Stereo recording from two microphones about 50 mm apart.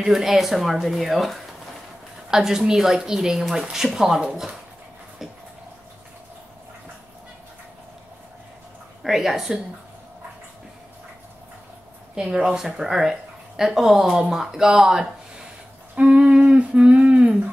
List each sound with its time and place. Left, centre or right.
0.0 s speech: centre
2.3 s speech: centre
9.0 s speech: centre
12.4 s speech: centre
16.0 s a sound: right